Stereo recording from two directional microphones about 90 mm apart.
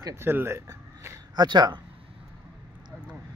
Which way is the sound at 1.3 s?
50° right (ahead or behind).